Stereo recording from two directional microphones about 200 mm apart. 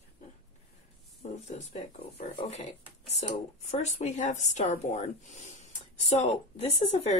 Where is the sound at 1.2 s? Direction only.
35° left (ahead or behind).